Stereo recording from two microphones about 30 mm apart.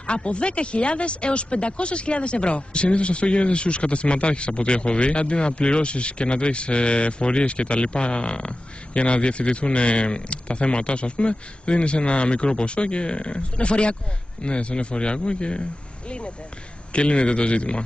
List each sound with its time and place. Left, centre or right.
0.0 s speech: left